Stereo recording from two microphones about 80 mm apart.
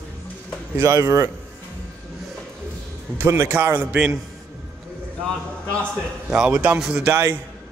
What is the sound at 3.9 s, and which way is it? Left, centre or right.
Speech, centre.